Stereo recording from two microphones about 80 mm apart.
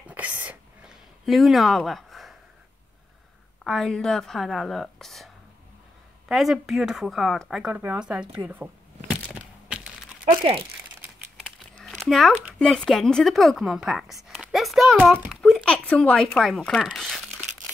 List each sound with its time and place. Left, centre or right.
0.1 s whispering: right
0.8 s a sound: centre
3.6 s speech: centre
7.6 s speech: right
9.1 s crushing: centre
12.0 s a child's voice: centre
15.6 s speech: centre